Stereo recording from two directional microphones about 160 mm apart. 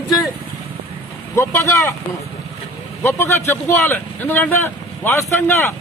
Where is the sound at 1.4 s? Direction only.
20° left (ahead or behind).